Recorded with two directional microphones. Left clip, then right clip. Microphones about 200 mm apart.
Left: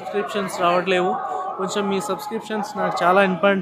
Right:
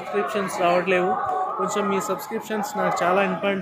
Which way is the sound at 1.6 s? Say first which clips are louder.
Even; 25° left (ahead or behind).